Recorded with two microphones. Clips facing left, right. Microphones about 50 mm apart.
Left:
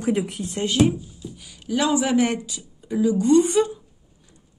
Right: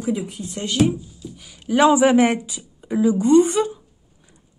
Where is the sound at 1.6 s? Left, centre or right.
Right.